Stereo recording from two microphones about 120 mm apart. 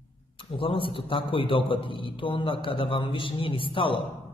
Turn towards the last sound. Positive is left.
turn(degrees=45)  # may be behind; listen again after turning